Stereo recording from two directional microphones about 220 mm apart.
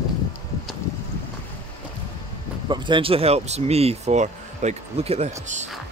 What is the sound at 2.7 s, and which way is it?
Speech, 20° right (ahead or behind).